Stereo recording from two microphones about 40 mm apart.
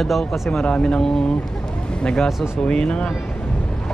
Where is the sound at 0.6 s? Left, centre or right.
Left.